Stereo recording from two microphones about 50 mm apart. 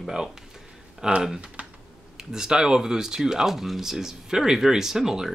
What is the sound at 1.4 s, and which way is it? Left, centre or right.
Speech, right.